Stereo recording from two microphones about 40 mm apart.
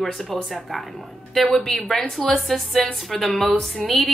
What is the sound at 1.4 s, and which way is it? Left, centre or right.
A woman's voice, centre.